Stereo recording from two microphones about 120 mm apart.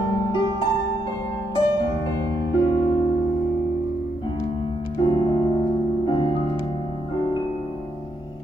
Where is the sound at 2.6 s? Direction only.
35° left (ahead or behind).